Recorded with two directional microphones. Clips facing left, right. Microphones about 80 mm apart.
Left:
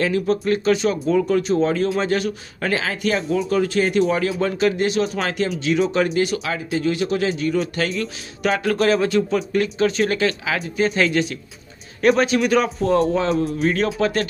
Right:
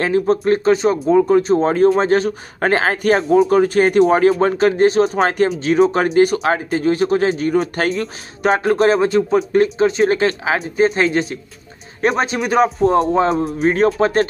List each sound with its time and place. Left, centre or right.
0.0 s a man's voice: right